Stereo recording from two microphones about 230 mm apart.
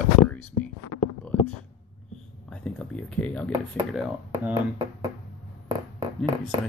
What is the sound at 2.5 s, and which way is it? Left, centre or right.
Speech, centre.